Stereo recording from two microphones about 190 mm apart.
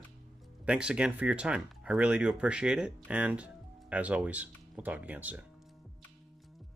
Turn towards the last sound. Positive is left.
turn(degrees=-10)  # may be behind; listen again after turning